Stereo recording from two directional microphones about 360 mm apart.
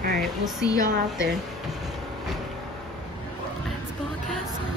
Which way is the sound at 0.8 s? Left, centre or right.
Right.